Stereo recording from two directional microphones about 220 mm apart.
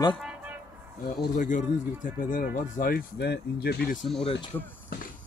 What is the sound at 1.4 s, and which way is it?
Speech, 35° left (ahead or behind).